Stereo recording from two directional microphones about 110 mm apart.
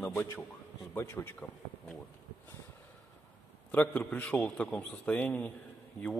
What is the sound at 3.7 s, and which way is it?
A man's voice, 15° left (ahead or behind).